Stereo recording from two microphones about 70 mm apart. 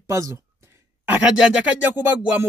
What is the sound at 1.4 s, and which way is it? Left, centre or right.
Music, centre.